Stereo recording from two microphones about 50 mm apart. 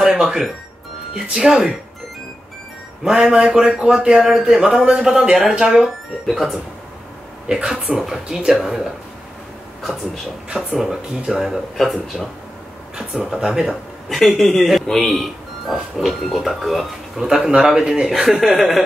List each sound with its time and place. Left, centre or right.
0.0 s music: centre
1.1 s speech: centre
3.3 s speech: centre
6.2 s speech: centre
7.4 s speech: centre
10.8 s speech: centre
12.9 s speech: centre
14.0 s speech: centre
17.5 s speech: centre